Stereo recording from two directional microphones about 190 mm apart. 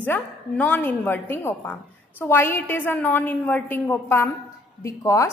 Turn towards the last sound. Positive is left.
turn(degrees=15)  # may be behind; listen again after turning